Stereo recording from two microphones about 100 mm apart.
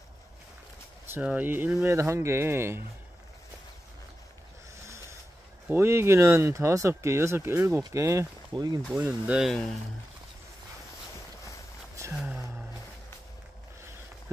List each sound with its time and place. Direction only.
1.2 s speech: 15° right (ahead or behind)
5.7 s speech: 25° right (ahead or behind)
8.9 s speech: 15° right (ahead or behind)
9.4 s speech: 5° left (ahead or behind)
12.1 s a sound: 15° right (ahead or behind)